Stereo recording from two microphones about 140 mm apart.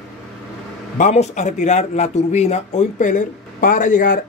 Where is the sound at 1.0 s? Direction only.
55° left (ahead or behind).